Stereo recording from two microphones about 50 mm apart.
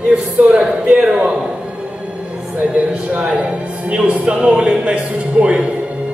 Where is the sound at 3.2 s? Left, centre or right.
Centre.